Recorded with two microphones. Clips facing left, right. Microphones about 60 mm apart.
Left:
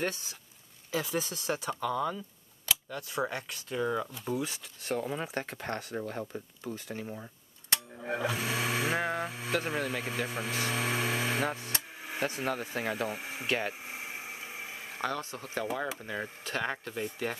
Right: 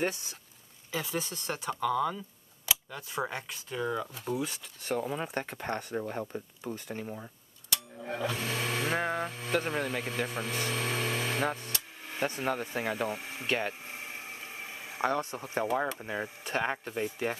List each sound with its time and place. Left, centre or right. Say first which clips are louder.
0.9 s speech: left 2 dB; centre
2.6 s speech: even; centre
6.0 s speech: right 1 dB; centre
8.0 s speech: left 1 dB; centre
12.1 s a sound: right 1 dB; centre
15.0 s speech: right 5 dB; right
16.4 s speech: right 3 dB; right
17.0 s speech: right 2 dB; centre